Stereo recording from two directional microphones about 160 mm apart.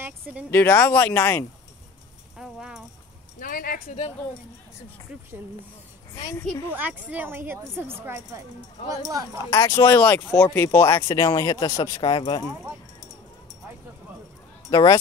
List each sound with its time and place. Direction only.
0.0 s a sound: 10° right (ahead or behind)
0.5 s speech: 10° left (ahead or behind)
2.3 s clip-clop: centre (ahead or behind)
3.3 s speech: 60° left (ahead or behind)
6.7 s a woman's voice: 10° right (ahead or behind)
9.5 s speech: 20° left (ahead or behind)
14.7 s speech: 25° left (ahead or behind)